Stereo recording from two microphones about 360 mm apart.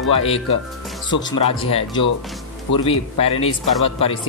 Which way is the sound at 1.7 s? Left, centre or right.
Centre.